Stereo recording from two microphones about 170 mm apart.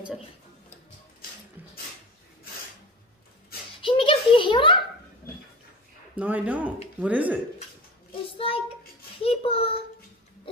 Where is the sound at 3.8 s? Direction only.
30° left (ahead or behind).